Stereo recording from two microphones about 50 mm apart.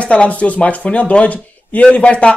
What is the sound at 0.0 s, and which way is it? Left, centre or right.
Speech, left.